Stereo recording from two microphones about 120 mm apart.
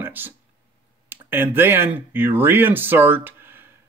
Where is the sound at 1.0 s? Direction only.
20° right (ahead or behind).